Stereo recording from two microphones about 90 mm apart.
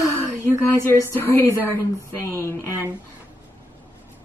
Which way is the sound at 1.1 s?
25° left (ahead or behind).